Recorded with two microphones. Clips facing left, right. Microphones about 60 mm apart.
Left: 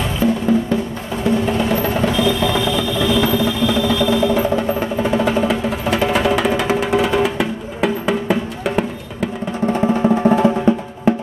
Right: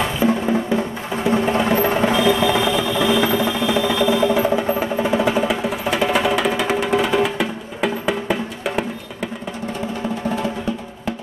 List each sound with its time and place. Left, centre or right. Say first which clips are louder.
0.2 s music: left 4 dB; centre
9.8 s music: left 11 dB; left